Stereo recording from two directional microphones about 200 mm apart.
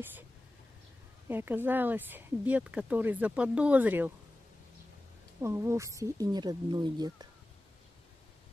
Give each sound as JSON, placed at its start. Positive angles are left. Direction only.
{"t": 1.3, "sound": "speech", "side_deg": -10}
{"t": 5.4, "sound": "speech", "side_deg": -15}